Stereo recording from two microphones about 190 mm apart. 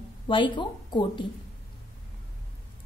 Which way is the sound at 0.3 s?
25° left (ahead or behind).